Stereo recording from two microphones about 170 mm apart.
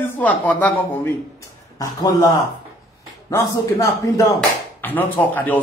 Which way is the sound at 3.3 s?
20° left (ahead or behind).